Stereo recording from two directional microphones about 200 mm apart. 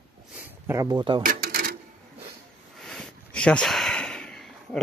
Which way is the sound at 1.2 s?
45° right (ahead or behind).